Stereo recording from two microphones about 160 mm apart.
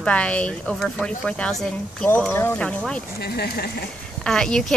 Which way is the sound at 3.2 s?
85° left.